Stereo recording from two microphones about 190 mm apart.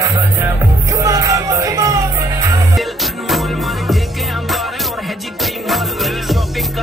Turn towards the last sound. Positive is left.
turn(degrees=0)  # may be behind; listen again after turning